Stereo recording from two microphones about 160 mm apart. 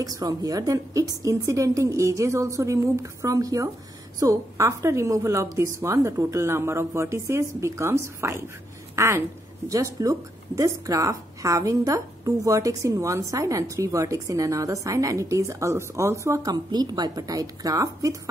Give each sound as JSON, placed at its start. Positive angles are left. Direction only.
{"t": 0.0, "sound": "a woman's voice", "side_deg": -25}